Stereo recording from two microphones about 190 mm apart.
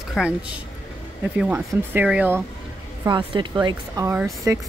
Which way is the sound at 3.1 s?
25° right (ahead or behind).